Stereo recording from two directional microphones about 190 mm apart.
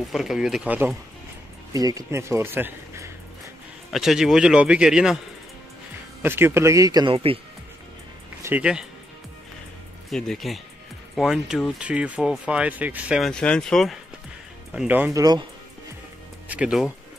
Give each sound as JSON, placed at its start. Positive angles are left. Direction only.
{"t": 0.1, "sound": "speech", "side_deg": 0}
{"t": 1.7, "sound": "speech", "side_deg": -20}
{"t": 3.9, "sound": "speech", "side_deg": 0}
{"t": 6.2, "sound": "speech", "side_deg": -10}
{"t": 8.5, "sound": "speech", "side_deg": -5}
{"t": 10.0, "sound": "speech", "side_deg": 0}
{"t": 16.4, "sound": "speech", "side_deg": -5}